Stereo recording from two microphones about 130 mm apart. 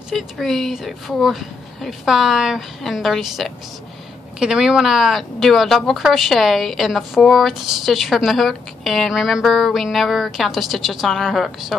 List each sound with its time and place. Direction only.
0.1 s speech: centre (ahead or behind)